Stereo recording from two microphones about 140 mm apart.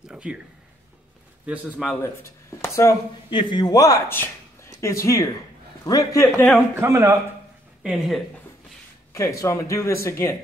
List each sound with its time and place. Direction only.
0.1 s a sound: 5° right (ahead or behind)
1.4 s a man's voice: 5° right (ahead or behind)
2.0 s speech: 20° left (ahead or behind)
3.3 s a man's voice: 35° left (ahead or behind)
6.7 s a man's voice: 20° right (ahead or behind)
7.8 s a man's voice: 5° right (ahead or behind)
9.1 s speech: 20° left (ahead or behind)